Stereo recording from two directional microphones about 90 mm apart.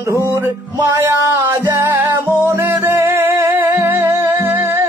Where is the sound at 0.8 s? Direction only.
35° right (ahead or behind).